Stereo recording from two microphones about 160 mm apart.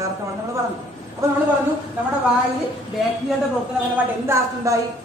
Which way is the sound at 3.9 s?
15° right (ahead or behind).